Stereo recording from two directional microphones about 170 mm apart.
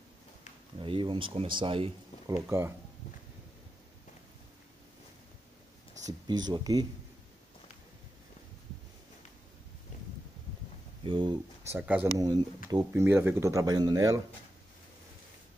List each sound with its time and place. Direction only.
0.8 s speech: 30° right (ahead or behind)
2.4 s speech: 15° right (ahead or behind)
6.0 s speech: 25° right (ahead or behind)
11.1 s speech: 25° right (ahead or behind)
11.6 s speech: 10° right (ahead or behind)